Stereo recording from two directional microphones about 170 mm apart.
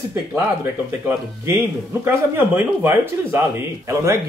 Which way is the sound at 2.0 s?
15° right (ahead or behind).